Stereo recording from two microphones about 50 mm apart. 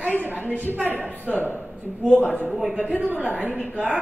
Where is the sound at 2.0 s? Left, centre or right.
Right.